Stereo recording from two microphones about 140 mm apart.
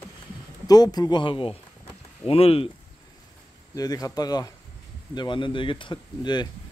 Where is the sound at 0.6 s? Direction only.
30° left (ahead or behind); by 2.7 s 45° left (ahead or behind).